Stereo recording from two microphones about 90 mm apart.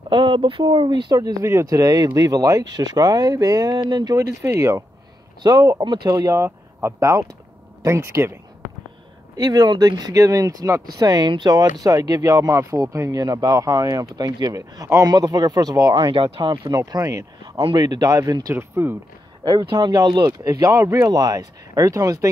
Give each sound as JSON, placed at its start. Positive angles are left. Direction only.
{"t": 0.1, "sound": "speech", "side_deg": -70}
{"t": 1.1, "sound": "speech", "side_deg": -40}
{"t": 5.4, "sound": "speech", "side_deg": -50}
{"t": 6.4, "sound": "speech", "side_deg": -30}
{"t": 9.4, "sound": "speech", "side_deg": -50}
{"t": 16.0, "sound": "speech", "side_deg": -70}
{"t": 17.7, "sound": "speech", "side_deg": -50}
{"t": 18.5, "sound": "speech", "side_deg": -25}
{"t": 19.7, "sound": "speech", "side_deg": -50}